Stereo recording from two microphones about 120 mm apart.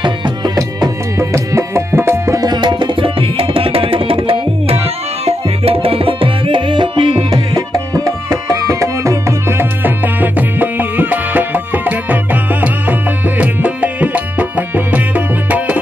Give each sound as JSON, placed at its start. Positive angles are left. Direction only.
{"t": 1.3, "sound": "music", "side_deg": -25}
{"t": 13.4, "sound": "music", "side_deg": -10}